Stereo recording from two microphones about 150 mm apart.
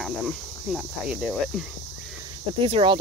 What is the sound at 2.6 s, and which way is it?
Speech, 40° right (ahead or behind).